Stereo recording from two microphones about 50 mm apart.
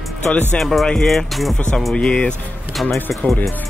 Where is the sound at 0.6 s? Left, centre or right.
Centre.